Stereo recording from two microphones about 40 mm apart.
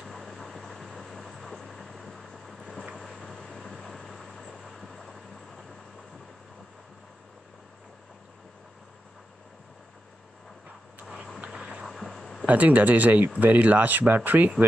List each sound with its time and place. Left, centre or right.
0.0 s vehicle: centre
11.5 s music: centre
11.8 s a sound: centre
12.4 s speech: right